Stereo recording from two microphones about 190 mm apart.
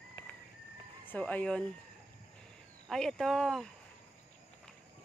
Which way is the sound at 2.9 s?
Centre (ahead or behind).